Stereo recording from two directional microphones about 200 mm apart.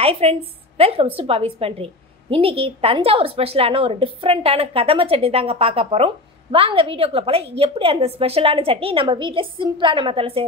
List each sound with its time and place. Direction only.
0.0 s a woman's voice: 30° right (ahead or behind)